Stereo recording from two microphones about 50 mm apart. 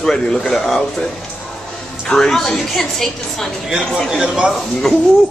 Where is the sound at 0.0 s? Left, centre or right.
Centre.